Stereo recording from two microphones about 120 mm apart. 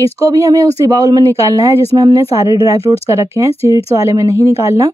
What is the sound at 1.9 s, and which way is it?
Speech, 40° right (ahead or behind).